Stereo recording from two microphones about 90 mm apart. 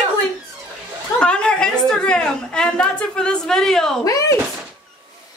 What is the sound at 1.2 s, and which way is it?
A woman's voice, 10° left (ahead or behind).